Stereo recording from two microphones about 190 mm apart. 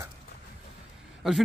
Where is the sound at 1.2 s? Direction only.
5° right (ahead or behind).